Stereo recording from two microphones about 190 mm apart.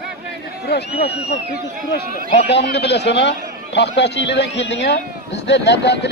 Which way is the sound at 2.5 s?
65° left (ahead or behind).